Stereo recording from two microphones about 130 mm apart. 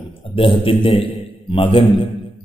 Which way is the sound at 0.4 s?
45° left (ahead or behind).